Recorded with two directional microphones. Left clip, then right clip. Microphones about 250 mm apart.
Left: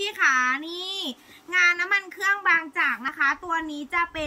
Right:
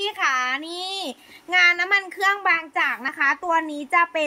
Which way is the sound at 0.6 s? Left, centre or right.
Right.